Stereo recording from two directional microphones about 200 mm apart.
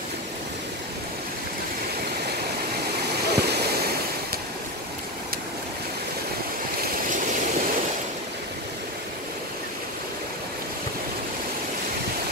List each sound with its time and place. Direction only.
3.3 s waves: 55° right (ahead or behind)
7.1 s vehicle: 40° right (ahead or behind)